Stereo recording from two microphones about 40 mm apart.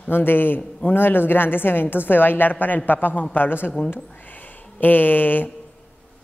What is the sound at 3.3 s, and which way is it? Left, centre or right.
Speech, left.